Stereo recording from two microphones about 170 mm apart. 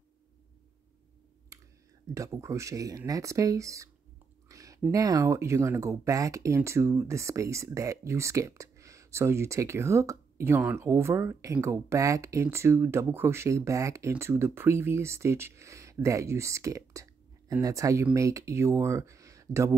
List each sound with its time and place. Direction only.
2.1 s speech: 20° right (ahead or behind)